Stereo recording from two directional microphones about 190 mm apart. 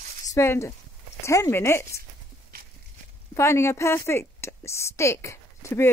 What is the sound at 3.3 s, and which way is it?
A woman's voice, 15° left (ahead or behind).